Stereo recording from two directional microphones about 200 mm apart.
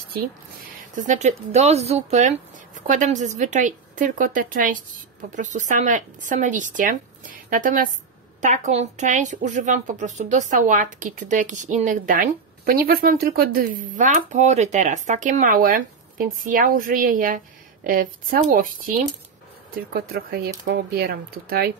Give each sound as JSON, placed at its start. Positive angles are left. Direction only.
{"t": 0.9, "sound": "speech", "side_deg": -40}